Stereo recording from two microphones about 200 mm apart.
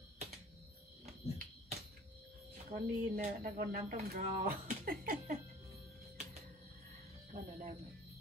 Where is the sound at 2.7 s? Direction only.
45° right (ahead or behind).